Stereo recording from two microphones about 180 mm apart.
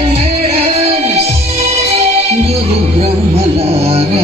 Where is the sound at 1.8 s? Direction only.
35° right (ahead or behind).